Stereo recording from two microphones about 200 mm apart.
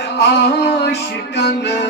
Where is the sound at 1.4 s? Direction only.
55° left (ahead or behind).